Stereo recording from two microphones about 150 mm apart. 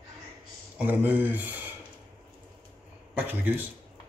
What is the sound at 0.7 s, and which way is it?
Speech, 10° right (ahead or behind).